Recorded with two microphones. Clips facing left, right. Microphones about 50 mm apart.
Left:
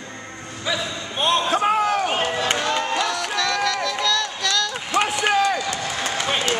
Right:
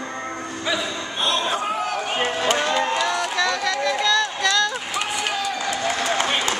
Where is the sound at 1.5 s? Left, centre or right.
Left.